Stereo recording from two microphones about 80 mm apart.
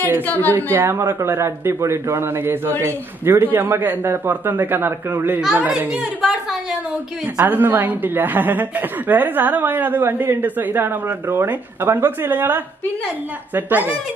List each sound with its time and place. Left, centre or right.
0.5 s a woman's voice: right
5.4 s a woman's voice: centre
7.3 s a woman's voice: right